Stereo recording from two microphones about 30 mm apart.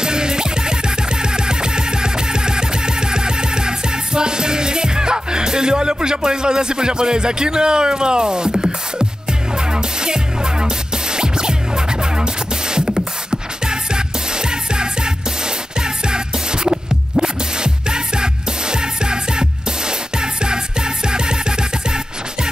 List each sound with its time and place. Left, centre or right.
0.0 s music: right
10.0 s music: right
12.7 s music: right
16.1 s music: right
21.1 s music: right